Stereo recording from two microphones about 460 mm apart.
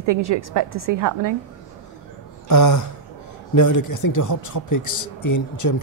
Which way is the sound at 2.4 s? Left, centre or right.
Left.